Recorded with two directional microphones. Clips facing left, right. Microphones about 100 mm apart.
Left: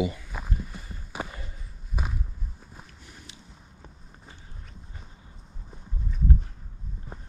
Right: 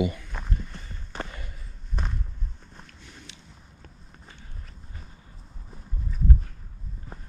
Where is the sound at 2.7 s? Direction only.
5° left (ahead or behind).